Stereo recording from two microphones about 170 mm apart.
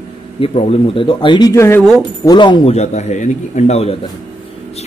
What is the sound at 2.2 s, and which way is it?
Speech, 25° left (ahead or behind).